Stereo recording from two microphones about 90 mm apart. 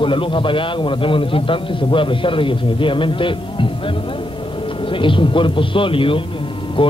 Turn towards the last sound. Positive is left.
turn(degrees=75)  # may be behind; listen again after turning